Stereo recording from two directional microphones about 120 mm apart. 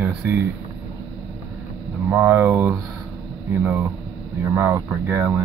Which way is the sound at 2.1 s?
15° right (ahead or behind).